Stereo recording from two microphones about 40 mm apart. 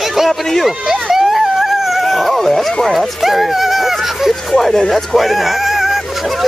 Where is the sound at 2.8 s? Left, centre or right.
Centre.